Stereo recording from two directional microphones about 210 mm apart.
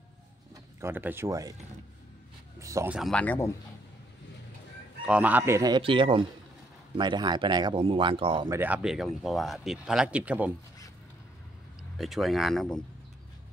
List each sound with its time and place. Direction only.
0.7 s speech: 10° right (ahead or behind)
2.6 s speech: 15° right (ahead or behind)
3.0 s speech: 5° left (ahead or behind)
5.0 s speech: 5° right (ahead or behind); by 8.5 s 25° right (ahead or behind)
8.5 s speech: 10° right (ahead or behind)
12.0 s speech: centre (ahead or behind)